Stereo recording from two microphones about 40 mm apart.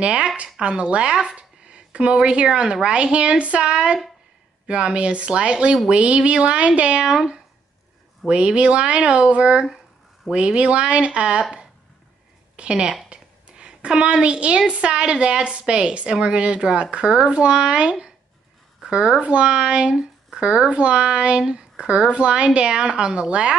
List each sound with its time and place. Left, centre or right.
0.0 s speech: right
12.5 s speech: right
13.1 s a sound: right
14.7 s speech: right